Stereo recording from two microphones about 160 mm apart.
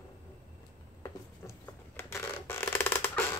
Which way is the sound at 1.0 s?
15° left (ahead or behind).